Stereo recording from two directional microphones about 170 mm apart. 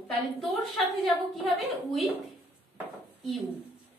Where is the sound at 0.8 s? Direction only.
Centre (ahead or behind).